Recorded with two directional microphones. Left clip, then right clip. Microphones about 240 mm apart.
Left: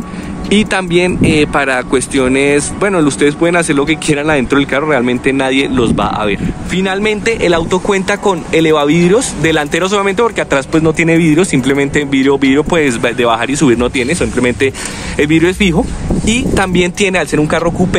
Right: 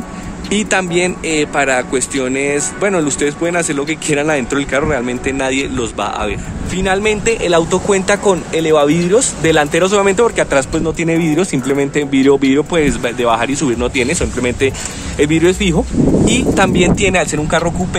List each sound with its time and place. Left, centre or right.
0.5 s speech: centre